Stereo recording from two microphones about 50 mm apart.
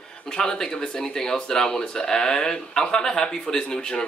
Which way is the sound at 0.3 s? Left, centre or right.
Centre.